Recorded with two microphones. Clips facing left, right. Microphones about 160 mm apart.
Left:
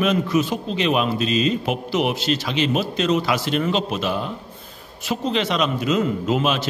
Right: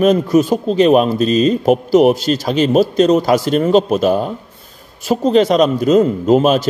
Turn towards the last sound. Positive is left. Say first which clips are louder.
# right 9 dB
turn(degrees=-40)  # may be behind; listen again after turning